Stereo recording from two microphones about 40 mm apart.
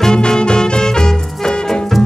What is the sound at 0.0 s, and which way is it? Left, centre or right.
Swing music, centre.